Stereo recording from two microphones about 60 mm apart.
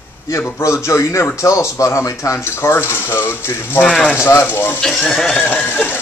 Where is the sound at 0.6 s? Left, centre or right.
Left.